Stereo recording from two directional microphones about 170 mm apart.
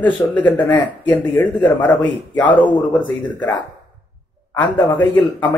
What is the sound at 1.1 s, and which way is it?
Speech, 25° left (ahead or behind).